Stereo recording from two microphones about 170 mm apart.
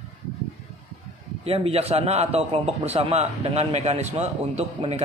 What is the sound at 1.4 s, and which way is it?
A man's voice, 35° right (ahead or behind).